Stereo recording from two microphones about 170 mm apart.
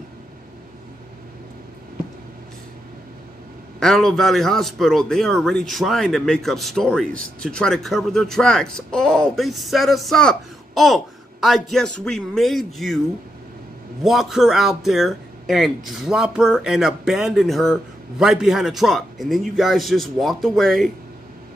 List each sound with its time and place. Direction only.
3.8 s a man's voice: centre (ahead or behind)
14.0 s a man's voice: centre (ahead or behind)